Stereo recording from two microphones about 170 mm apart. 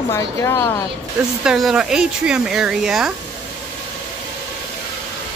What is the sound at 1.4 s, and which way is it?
Speech, 5° right (ahead or behind).